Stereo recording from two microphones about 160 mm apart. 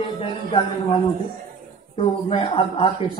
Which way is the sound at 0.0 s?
30° left (ahead or behind).